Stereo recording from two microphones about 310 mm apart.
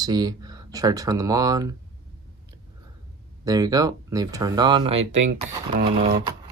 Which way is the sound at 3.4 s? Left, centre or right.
Centre.